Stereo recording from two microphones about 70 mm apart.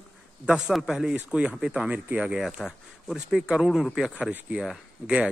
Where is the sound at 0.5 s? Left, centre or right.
Centre.